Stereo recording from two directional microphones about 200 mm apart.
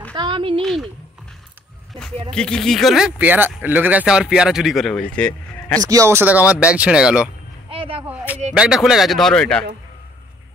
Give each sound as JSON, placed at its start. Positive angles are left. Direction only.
{"t": 0.1, "sound": "speech", "side_deg": -25}
{"t": 0.6, "sound": "speech", "side_deg": 0}
{"t": 2.3, "sound": "speech", "side_deg": 5}
{"t": 5.8, "sound": "speech", "side_deg": -15}
{"t": 7.7, "sound": "whip", "side_deg": -25}
{"t": 8.5, "sound": "speech", "side_deg": -5}